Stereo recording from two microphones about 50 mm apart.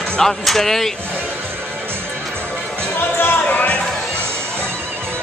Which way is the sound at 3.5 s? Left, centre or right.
Left.